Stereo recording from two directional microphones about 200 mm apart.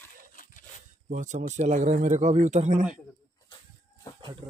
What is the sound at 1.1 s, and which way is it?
Speech, 35° right (ahead or behind).